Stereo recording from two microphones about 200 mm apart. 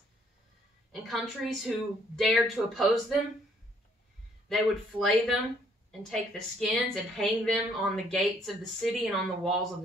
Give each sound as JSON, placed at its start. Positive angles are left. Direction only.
{"t": 1.0, "sound": "a woman's voice", "side_deg": 0}
{"t": 4.5, "sound": "a woman's voice", "side_deg": 0}